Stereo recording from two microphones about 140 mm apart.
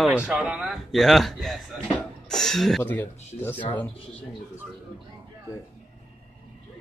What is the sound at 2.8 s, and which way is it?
Mantra, 10° left (ahead or behind).